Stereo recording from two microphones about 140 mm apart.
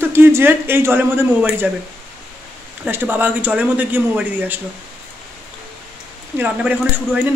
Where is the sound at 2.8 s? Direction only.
15° right (ahead or behind).